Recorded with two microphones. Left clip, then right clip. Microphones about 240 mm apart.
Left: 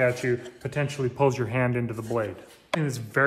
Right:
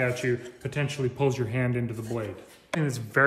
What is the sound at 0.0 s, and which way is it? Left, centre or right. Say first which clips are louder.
Speech: left 3 dB; centre.